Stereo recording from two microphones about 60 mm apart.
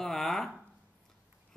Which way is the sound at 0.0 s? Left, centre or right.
Centre.